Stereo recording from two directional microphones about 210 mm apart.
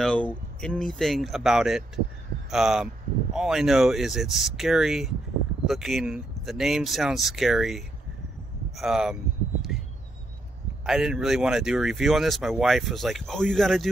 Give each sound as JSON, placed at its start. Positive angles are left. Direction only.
{"t": 0.0, "sound": "speech", "side_deg": 5}
{"t": 10.9, "sound": "speech", "side_deg": -5}